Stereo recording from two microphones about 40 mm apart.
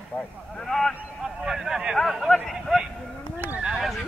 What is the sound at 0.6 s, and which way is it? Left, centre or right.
Speech, centre.